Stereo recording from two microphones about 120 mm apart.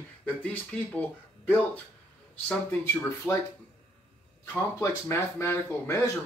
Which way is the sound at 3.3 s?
25° left (ahead or behind).